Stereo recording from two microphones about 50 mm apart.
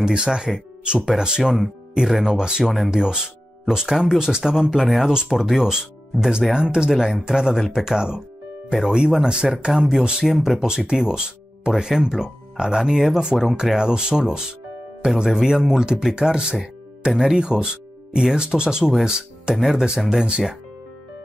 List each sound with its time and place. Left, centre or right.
0.0 s speech: centre
2.9 s speech: centre
20.2 s speech: centre